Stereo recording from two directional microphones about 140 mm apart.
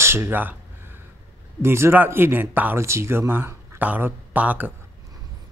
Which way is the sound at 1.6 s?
15° right (ahead or behind).